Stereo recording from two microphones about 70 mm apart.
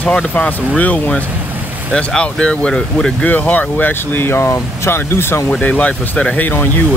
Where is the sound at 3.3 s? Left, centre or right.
Left.